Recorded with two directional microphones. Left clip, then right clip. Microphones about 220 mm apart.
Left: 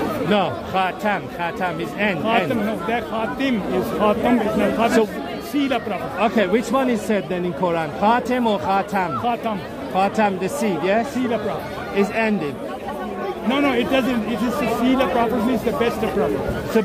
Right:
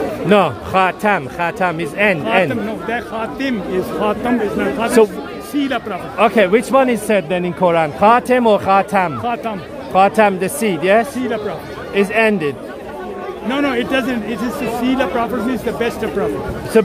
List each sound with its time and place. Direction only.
0.3 s a man's voice: 50° right (ahead or behind)
2.9 s speech: 10° right (ahead or behind)
6.1 s a man's voice: 45° right (ahead or behind)
9.2 s speech: 10° right (ahead or behind)
9.9 s a man's voice: 45° right (ahead or behind)
13.5 s speech: 15° right (ahead or behind)
16.7 s a man's voice: 45° right (ahead or behind)